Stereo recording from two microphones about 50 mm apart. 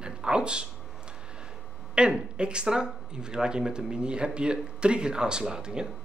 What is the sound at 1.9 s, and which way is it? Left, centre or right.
Speech, centre.